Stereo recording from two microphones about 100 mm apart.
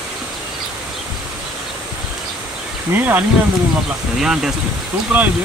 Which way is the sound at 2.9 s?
20° right (ahead or behind).